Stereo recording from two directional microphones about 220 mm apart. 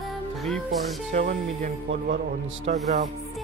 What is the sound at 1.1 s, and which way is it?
Speech, 35° right (ahead or behind).